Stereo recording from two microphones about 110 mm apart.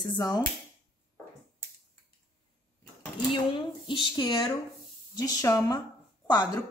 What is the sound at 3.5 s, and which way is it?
Speech, 50° left (ahead or behind).